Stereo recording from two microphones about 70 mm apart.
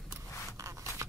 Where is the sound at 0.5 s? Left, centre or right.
Right.